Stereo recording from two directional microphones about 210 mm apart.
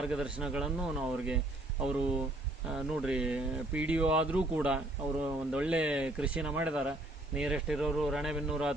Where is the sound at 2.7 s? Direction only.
5° right (ahead or behind).